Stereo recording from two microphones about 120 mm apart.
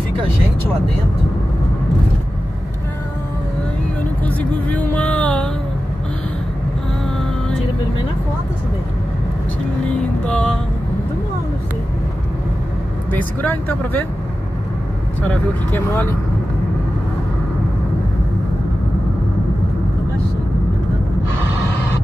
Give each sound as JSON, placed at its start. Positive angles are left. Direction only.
{"t": 4.2, "sound": "music", "side_deg": 10}
{"t": 9.9, "sound": "speech", "side_deg": 10}
{"t": 13.1, "sound": "speech", "side_deg": 15}
{"t": 15.7, "sound": "speech", "side_deg": 20}